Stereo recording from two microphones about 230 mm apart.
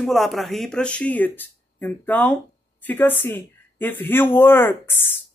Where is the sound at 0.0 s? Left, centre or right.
Centre.